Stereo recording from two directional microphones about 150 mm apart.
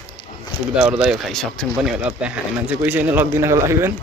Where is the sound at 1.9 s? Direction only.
10° right (ahead or behind).